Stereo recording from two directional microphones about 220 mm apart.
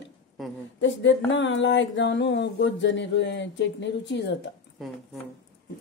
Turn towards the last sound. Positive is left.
turn(degrees=55)  # may be behind; listen again after turning